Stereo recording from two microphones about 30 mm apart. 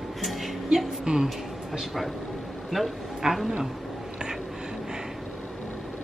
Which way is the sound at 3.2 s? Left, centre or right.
Right.